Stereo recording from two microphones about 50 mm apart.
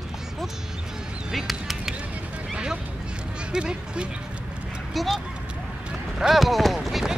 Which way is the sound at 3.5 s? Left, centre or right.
Centre.